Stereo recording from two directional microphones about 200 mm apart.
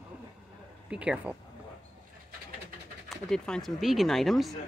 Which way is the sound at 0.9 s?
5° right (ahead or behind).